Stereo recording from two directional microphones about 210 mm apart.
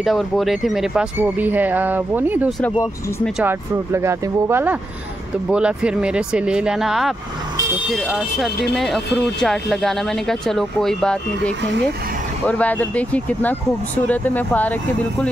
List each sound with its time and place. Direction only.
0.0 s speech: centre (ahead or behind)